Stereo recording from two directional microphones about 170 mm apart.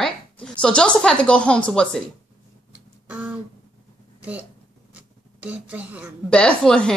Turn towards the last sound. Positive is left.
turn(degrees=5)  # may be behind; listen again after turning